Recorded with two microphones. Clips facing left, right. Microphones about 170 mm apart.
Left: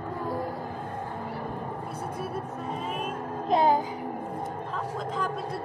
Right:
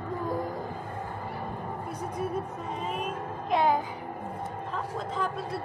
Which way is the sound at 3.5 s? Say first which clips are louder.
Left 2 dB; 35° left (ahead or behind).